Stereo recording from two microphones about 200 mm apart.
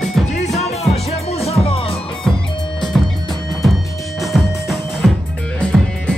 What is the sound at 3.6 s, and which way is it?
Music, centre (ahead or behind).